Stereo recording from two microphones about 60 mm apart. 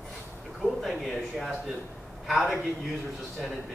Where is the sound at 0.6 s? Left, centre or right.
Centre.